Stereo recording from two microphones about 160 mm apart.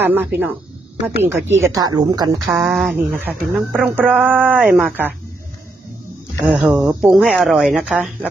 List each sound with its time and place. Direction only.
0.0 s speech: 10° right (ahead or behind)
2.5 s speech: centre (ahead or behind)
6.4 s speech: 10° right (ahead or behind)